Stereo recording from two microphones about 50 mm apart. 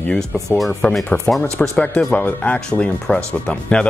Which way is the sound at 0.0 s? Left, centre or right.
Left.